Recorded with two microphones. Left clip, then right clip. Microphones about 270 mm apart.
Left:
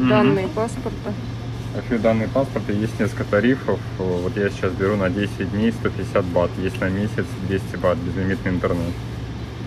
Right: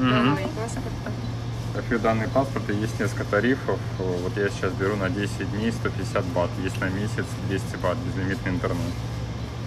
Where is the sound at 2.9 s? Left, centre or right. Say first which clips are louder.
Left 4 dB; centre.